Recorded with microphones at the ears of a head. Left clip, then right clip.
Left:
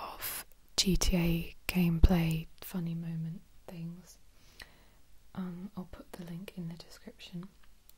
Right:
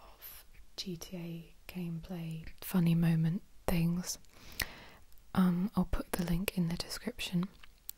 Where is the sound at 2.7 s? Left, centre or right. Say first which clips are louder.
Right 9 dB; right.